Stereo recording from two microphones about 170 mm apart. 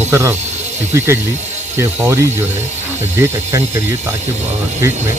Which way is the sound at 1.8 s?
15° right (ahead or behind).